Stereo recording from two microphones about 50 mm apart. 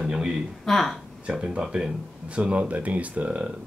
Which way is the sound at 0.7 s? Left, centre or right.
Centre.